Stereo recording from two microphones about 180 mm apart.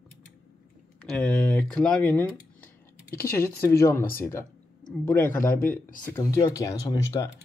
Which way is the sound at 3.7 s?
15° left (ahead or behind).